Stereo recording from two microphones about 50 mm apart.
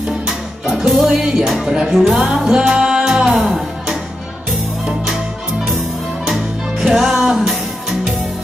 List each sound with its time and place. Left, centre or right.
0.3 s music: centre
6.2 s music: centre